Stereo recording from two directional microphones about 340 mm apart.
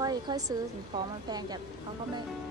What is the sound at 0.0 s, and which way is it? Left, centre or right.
Speech, centre.